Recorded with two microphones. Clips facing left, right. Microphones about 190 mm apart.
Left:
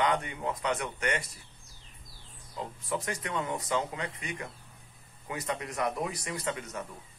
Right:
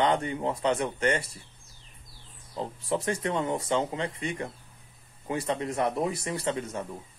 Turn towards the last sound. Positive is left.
turn(degrees=-30)  # may be behind; listen again after turning